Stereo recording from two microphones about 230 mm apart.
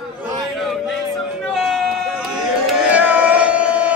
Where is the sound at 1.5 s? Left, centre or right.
Centre.